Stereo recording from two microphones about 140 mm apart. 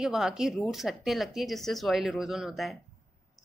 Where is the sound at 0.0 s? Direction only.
5° right (ahead or behind).